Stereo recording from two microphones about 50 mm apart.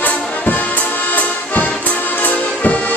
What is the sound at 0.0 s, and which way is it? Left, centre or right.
Music, left.